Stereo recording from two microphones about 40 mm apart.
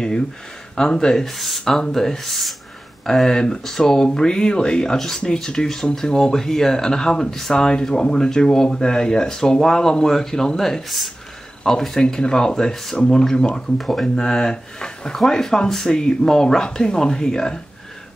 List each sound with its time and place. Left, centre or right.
0.7 s speech: centre
1.6 s speech: centre